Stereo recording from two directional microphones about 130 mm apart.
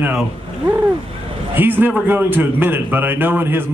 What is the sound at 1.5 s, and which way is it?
A man's voice, 15° right (ahead or behind).